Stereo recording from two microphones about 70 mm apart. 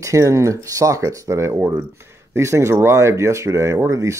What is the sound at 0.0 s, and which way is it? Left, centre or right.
Speech, right.